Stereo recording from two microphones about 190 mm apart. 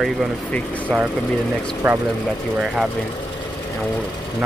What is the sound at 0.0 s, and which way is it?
Speech, centre (ahead or behind).